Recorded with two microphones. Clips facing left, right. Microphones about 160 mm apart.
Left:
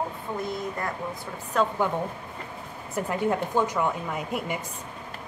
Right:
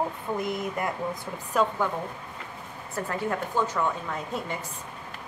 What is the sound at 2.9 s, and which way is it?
A woman's voice, 20° left (ahead or behind).